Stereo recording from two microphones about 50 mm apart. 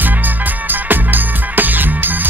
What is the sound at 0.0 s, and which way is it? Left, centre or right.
Music, right.